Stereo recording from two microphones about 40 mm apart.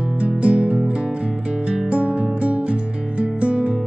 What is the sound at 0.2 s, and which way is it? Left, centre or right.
Music, right.